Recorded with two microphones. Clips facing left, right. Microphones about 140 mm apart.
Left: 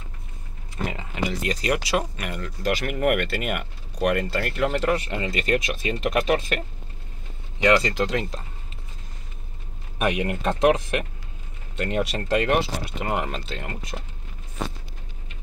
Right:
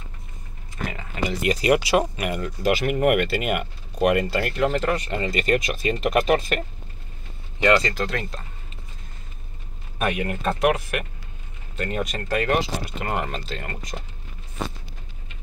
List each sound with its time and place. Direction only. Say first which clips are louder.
0.8 s speech: left 1 dB; 20° left (ahead or behind)
1.4 s speech: right 9 dB; 10° right (ahead or behind)
4.6 s speech: left 3 dB; 10° left (ahead or behind)
7.6 s speech: even; 10° left (ahead or behind)
9.9 s speech: left 1 dB; 15° left (ahead or behind)